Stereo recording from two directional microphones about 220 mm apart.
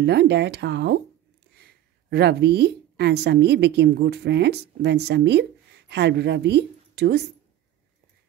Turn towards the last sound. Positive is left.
turn(degrees=-50)  # may be behind; listen again after turning